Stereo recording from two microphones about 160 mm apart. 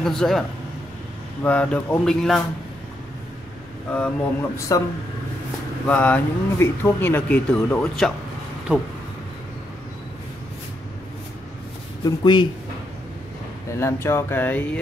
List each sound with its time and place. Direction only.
0.0 s speech: 5° left (ahead or behind)
3.9 s speech: 10° left (ahead or behind)
4.7 s speech: 20° left (ahead or behind)
5.9 s speech: 10° left (ahead or behind)
8.7 s speech: 10° right (ahead or behind)
12.0 s speech: 30° left (ahead or behind)
13.7 s speech: 15° left (ahead or behind)